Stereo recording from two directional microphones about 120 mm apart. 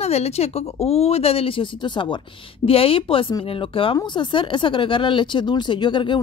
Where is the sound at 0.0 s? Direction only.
60° left (ahead or behind).